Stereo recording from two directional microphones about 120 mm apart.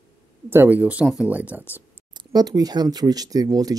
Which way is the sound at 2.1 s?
35° right (ahead or behind).